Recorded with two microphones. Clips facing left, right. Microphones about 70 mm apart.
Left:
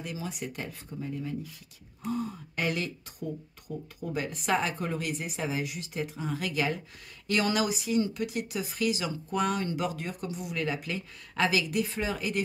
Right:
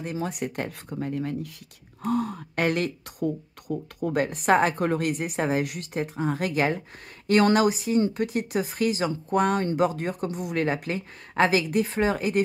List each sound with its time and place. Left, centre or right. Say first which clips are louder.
0.0 s speech: right 7 dB; right